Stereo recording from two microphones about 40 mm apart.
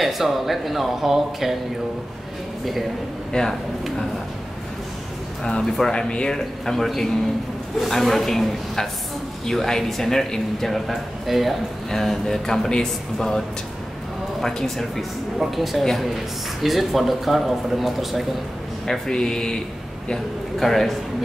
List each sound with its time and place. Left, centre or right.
0.0 s speech: centre
3.3 s speech: left
5.4 s speech: centre
6.3 s speech: centre
11.9 s speech: centre
14.4 s speech: centre
18.9 s speech: centre
20.5 s speech: centre